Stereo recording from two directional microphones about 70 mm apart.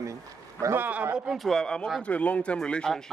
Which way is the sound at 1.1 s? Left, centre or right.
Centre.